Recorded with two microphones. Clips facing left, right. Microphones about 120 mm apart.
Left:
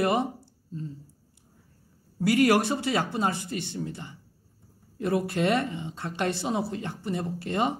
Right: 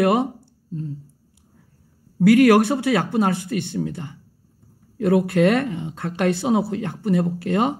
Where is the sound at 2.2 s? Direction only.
55° right (ahead or behind).